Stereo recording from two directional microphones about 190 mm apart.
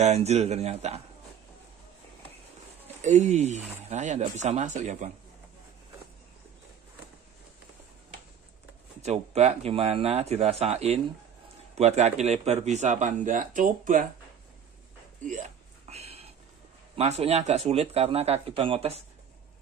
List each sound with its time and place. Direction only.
0.0 s speech: 35° right (ahead or behind)
3.0 s speech: 35° right (ahead or behind)
9.0 s speech: 35° right (ahead or behind)
15.9 s a sound: 35° right (ahead or behind)
16.9 s speech: 30° right (ahead or behind)